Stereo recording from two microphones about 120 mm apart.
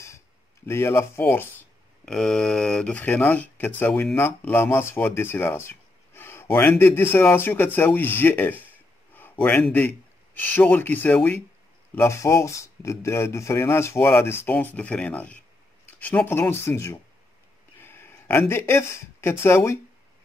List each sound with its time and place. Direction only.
0.7 s speech: 20° left (ahead or behind)
2.0 s speech: 5° left (ahead or behind); by 19.8 s 20° left (ahead or behind)